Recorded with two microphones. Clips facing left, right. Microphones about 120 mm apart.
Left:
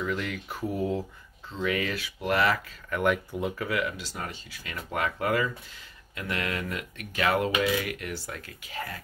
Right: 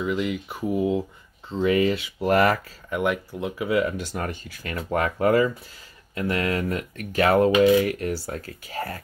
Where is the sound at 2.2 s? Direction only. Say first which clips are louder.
Right 6 dB; 45° right (ahead or behind).